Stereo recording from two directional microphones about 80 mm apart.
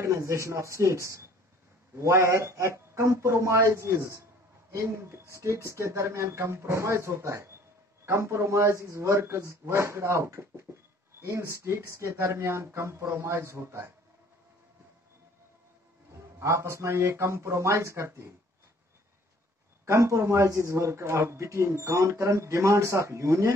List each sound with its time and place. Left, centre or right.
0.0 s speech: right
16.3 s speech: right
19.8 s speech: right